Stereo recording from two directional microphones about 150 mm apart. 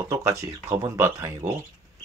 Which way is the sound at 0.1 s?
20° right (ahead or behind).